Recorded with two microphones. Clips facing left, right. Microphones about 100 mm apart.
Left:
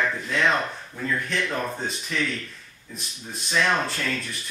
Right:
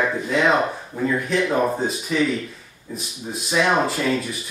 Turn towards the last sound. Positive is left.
turn(degrees=-10)  # may be behind; listen again after turning